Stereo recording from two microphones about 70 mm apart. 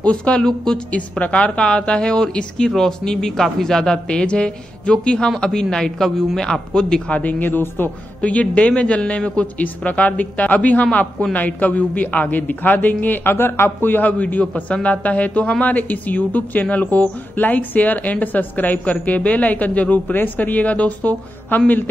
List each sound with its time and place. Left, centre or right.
0.0 s speech: centre
7.2 s speech: left
8.2 s speech: centre